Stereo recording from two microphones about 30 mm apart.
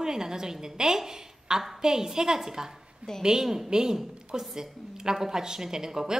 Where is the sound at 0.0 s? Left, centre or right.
Centre.